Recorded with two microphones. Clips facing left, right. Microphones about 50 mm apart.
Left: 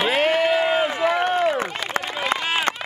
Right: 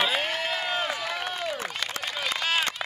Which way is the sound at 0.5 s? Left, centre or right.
Left.